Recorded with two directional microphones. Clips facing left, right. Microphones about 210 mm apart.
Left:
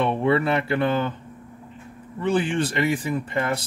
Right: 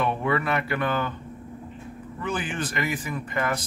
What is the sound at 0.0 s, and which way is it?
Speech, 30° left (ahead or behind).